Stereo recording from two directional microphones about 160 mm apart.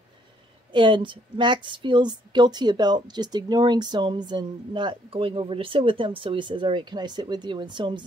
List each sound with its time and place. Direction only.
0.7 s a woman's voice: 30° right (ahead or behind)